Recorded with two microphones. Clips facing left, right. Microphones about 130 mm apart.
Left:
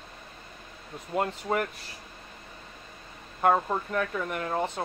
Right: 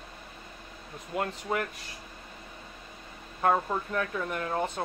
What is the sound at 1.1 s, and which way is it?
Speech, 25° left (ahead or behind).